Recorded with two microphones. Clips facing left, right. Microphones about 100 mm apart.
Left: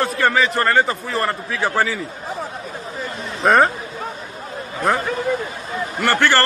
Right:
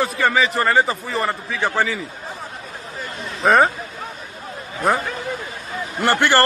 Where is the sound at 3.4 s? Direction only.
Centre (ahead or behind).